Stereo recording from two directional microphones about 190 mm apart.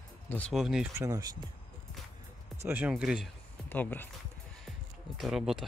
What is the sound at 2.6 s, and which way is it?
Speech, 10° right (ahead or behind).